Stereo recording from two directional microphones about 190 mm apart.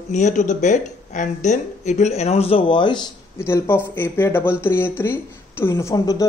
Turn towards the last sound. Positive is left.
turn(degrees=15)  # may be behind; listen again after turning